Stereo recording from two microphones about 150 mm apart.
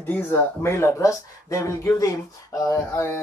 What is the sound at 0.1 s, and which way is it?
Speech, 15° left (ahead or behind).